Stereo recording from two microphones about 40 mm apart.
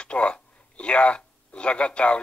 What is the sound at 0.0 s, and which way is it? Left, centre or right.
Speech, left.